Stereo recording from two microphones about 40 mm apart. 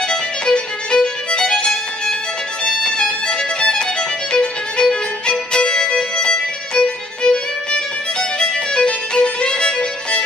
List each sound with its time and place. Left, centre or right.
0.1 s music: centre
4.3 s violin: left